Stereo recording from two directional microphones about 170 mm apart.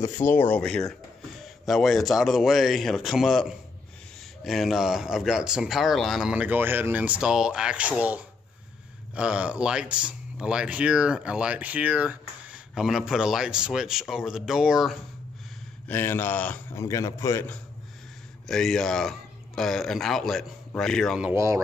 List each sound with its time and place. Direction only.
0.0 s a man's voice: 15° left (ahead or behind); by 15.0 s centre (ahead or behind)
15.9 s a man's voice: 15° left (ahead or behind)
18.5 s speech: 5° left (ahead or behind)
21.3 s speech: 15° right (ahead or behind)